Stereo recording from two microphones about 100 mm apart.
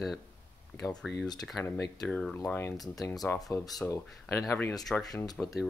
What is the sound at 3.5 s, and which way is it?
Speech, 35° left (ahead or behind).